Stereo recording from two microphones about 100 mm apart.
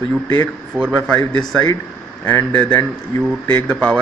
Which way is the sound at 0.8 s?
15° right (ahead or behind).